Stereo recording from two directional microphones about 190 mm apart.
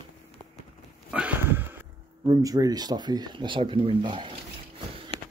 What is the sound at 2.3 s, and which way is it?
Speech, 20° right (ahead or behind).